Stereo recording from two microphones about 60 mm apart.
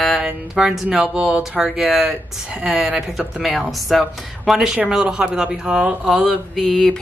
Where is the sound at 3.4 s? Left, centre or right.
Centre.